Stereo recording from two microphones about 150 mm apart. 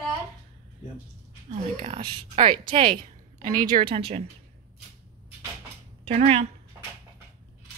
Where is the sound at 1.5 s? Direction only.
45° right (ahead or behind).